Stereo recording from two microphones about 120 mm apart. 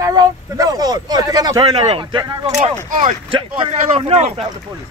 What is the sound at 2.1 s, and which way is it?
Speech, 45° right (ahead or behind).